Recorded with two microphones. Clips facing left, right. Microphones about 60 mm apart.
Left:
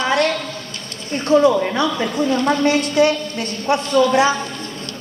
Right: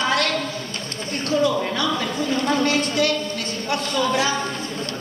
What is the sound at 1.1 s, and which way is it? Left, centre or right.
A woman's voice, left.